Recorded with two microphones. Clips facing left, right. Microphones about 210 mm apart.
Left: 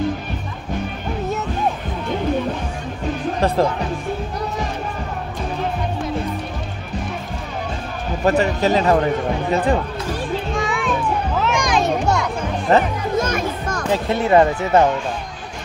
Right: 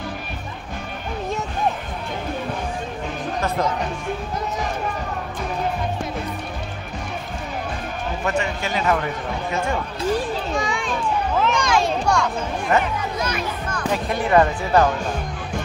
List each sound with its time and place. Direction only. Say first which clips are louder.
3.3 s speech: left 6 dB; 30° left (ahead or behind)
8.3 s speech: left 9 dB; 35° left (ahead or behind)
10.5 s music: left 2 dB; centre (ahead or behind)
11.5 s children playing: left 2 dB; 15° left (ahead or behind)
12.7 s speech: left 5 dB; 35° left (ahead or behind)
13.1 s children playing: left 5 dB; 45° left (ahead or behind)
13.9 s speech: left 3 dB; 25° left (ahead or behind)